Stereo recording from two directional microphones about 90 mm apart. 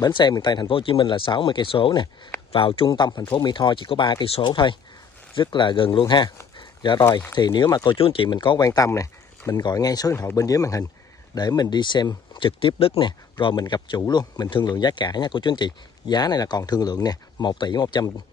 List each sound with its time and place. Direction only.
0.0 s speech: 55° left (ahead or behind)
0.7 s speech: 75° left (ahead or behind); by 6.3 s 55° left (ahead or behind)
6.6 s dog: 60° left (ahead or behind)
7.0 s speech: 30° left (ahead or behind)
7.3 s speech: 55° left (ahead or behind); by 8.3 s 80° left
8.3 s speech: 55° left (ahead or behind)
8.6 s speech: 40° left (ahead or behind)
9.5 s speech: 50° left (ahead or behind)